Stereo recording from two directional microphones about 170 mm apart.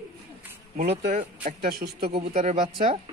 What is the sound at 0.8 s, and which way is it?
Speech, 50° right (ahead or behind).